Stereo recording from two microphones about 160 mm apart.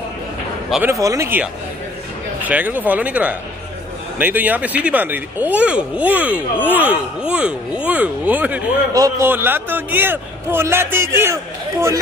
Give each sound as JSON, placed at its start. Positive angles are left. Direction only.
{"t": 0.7, "sound": "a man's voice", "side_deg": 0}
{"t": 1.0, "sound": "speech", "side_deg": -20}
{"t": 8.9, "sound": "a man's voice", "side_deg": -25}
{"t": 9.3, "sound": "speech", "side_deg": -15}